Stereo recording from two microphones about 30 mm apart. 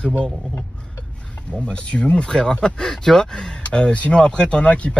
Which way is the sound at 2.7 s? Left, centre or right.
Centre.